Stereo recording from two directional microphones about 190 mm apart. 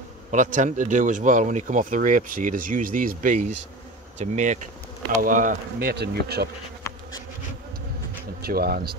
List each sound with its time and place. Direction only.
0.3 s speech: 40° right (ahead or behind); by 6.5 s 55° right (ahead or behind)
8.4 s speech: 55° right (ahead or behind)